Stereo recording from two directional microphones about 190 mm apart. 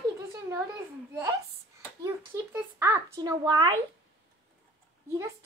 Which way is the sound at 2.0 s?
15° right (ahead or behind).